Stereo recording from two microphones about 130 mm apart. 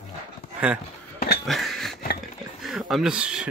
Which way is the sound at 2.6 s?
Centre (ahead or behind).